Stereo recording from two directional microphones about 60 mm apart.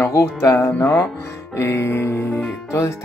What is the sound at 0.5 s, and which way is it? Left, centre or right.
Music, left.